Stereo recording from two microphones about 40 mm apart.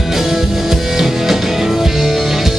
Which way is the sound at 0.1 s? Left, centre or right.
Centre.